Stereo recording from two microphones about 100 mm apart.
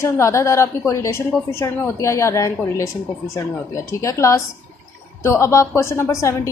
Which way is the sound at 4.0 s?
30° left (ahead or behind).